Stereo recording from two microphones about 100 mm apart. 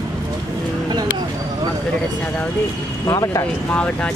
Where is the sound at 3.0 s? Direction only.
35° left (ahead or behind).